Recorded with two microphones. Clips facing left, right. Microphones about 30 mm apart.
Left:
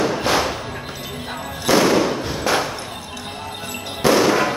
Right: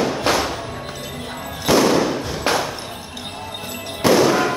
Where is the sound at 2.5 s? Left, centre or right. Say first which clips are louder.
Even; right.